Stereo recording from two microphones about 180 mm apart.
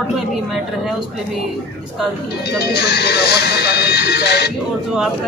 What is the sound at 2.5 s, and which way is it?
Speech, 65° left (ahead or behind).